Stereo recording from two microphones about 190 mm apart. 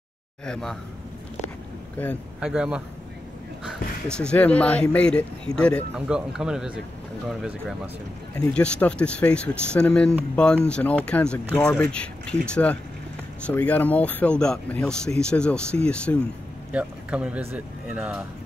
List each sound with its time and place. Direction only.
0.5 s speech: centre (ahead or behind)
2.4 s speech: 5° right (ahead or behind)
4.1 s speech: 5° left (ahead or behind)
16.7 s speech: 5° right (ahead or behind)